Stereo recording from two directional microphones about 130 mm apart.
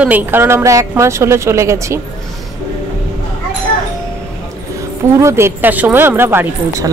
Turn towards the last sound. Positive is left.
turn(degrees=-20)  # may be behind; listen again after turning